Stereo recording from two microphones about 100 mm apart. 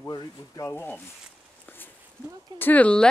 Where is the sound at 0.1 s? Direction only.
35° left (ahead or behind).